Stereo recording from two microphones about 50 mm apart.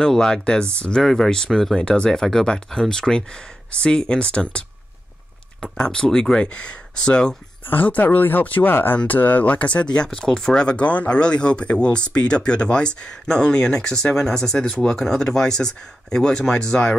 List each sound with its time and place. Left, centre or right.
0.0 s speech: centre
1.8 s speech: centre
7.6 s speech: left
9.5 s speech: left
10.0 s speech: centre